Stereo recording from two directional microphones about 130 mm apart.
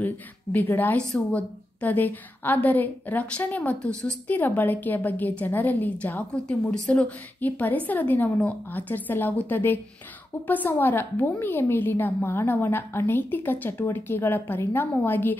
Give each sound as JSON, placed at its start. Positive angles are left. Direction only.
{"t": 0.0, "sound": "a woman's voice", "side_deg": 15}